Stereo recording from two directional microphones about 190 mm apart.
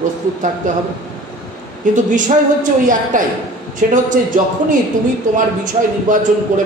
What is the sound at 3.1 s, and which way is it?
Speech, 45° right (ahead or behind).